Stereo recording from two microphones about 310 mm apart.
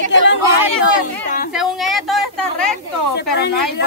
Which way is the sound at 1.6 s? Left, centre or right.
Centre.